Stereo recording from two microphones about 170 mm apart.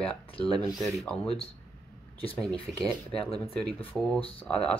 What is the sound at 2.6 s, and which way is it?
Speech, centre (ahead or behind).